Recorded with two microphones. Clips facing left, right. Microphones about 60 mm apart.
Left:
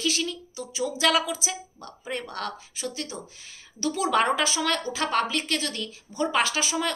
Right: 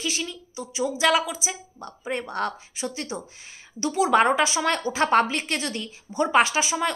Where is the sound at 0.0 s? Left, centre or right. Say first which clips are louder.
Left 2 dB; centre.